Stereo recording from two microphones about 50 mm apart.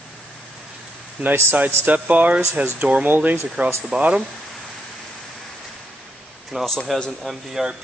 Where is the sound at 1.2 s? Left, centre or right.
Right.